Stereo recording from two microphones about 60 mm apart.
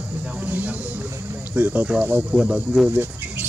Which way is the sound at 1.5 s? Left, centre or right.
Right.